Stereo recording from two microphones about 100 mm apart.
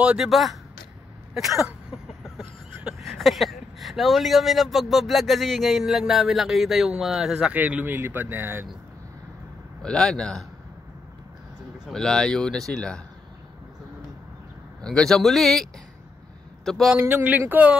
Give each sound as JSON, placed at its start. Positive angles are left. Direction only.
{"t": 0.0, "sound": "speech", "side_deg": -5}
{"t": 2.9, "sound": "speech", "side_deg": 0}
{"t": 7.5, "sound": "speech", "side_deg": -15}
{"t": 9.8, "sound": "speech", "side_deg": 5}
{"t": 11.9, "sound": "speech", "side_deg": 5}
{"t": 14.8, "sound": "a man's voice", "side_deg": 5}
{"t": 17.0, "sound": "speech", "side_deg": -20}